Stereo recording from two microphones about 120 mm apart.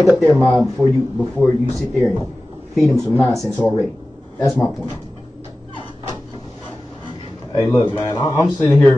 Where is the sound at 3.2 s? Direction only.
Centre (ahead or behind).